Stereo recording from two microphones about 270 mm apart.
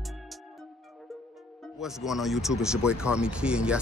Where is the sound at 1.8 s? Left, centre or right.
Centre.